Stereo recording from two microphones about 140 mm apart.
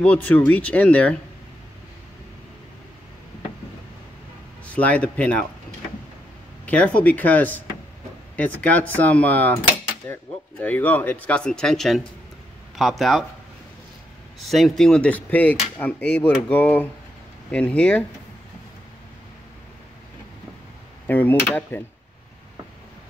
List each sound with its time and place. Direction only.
0.0 s speech: 10° left (ahead or behind)
4.6 s speech: 10° left (ahead or behind)
6.6 s speech: 10° left (ahead or behind)
10.6 s speech: 10° left (ahead or behind)
14.4 s speech: centre (ahead or behind)
21.1 s speech: 10° left (ahead or behind)